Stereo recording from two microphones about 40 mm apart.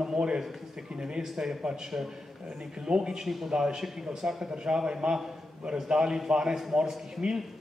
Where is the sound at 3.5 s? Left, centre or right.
Centre.